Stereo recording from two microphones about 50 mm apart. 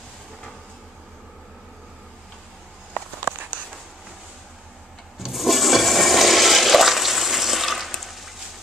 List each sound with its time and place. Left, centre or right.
3.3 s walk: right
5.2 s toilet flush: centre